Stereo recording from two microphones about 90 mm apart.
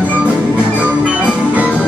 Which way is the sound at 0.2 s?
15° right (ahead or behind).